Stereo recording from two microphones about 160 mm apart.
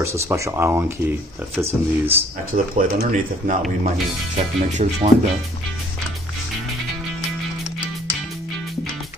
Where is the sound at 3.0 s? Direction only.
50° right (ahead or behind).